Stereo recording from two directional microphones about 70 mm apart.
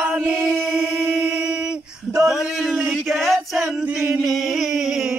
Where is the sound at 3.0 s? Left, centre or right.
Centre.